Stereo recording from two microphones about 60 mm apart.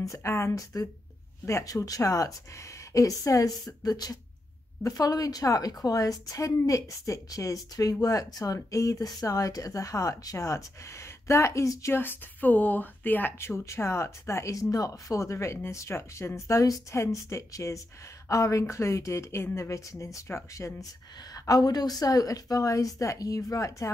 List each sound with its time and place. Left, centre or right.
0.0 s speech: left
1.6 s a woman's voice: left
8.7 s speech: left
11.9 s a woman's voice: left
13.4 s speech: left
20.5 s speech: left